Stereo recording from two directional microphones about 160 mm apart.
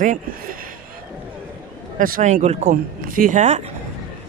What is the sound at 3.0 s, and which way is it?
Speech, 60° right (ahead or behind).